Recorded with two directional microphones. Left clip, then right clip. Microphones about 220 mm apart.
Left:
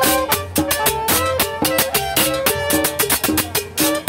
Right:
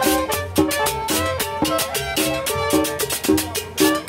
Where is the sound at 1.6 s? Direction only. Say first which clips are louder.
Left 3 dB; 50° left (ahead or behind).